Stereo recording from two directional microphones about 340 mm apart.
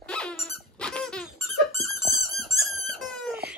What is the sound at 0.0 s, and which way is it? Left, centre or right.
Squeak, centre.